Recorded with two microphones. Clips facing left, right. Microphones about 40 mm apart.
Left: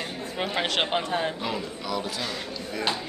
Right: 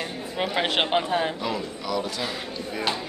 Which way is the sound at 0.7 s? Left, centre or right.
Centre.